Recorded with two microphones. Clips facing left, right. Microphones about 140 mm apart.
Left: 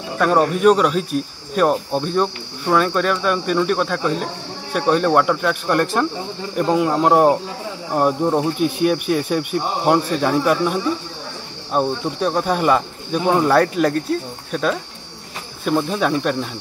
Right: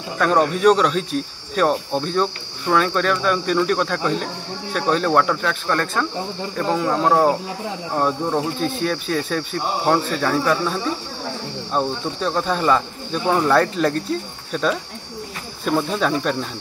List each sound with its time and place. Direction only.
0.2 s speech: 5° left (ahead or behind)